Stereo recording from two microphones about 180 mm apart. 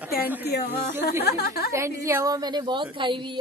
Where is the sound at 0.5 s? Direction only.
65° left (ahead or behind).